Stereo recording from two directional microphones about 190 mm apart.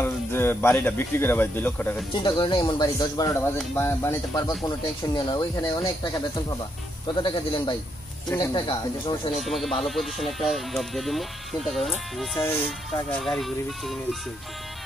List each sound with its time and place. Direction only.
0.0 s speech: 10° left (ahead or behind)
2.1 s speech: 25° left (ahead or behind)
9.4 s speech: centre (ahead or behind)